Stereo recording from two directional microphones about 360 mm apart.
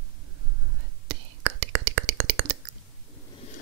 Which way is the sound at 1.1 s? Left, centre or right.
Right.